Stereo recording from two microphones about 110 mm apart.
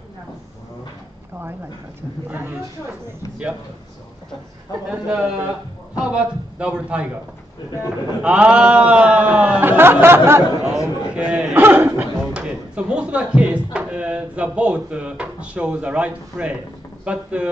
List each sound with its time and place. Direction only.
2.2 s speech: 15° right (ahead or behind)
4.9 s speech: 10° right (ahead or behind)
8.2 s speech: 10° right (ahead or behind)
10.6 s a sound: 5° right (ahead or behind)
12.4 s speech: 10° right (ahead or behind)